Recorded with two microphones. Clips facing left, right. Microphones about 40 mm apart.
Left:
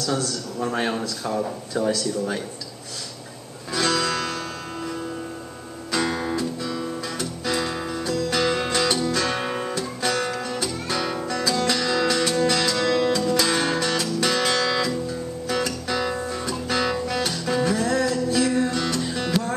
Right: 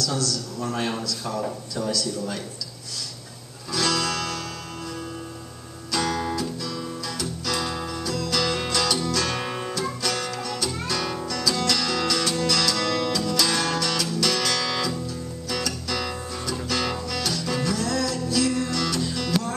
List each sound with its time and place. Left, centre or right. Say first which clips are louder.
0.0 s a man's voice: left 1 dB; left
3.7 s music: left 2 dB; left
5.9 s music: left 1 dB; left
9.8 s music: left 1 dB; left